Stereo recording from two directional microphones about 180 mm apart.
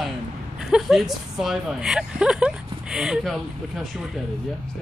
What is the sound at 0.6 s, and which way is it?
Speech, 5° right (ahead or behind).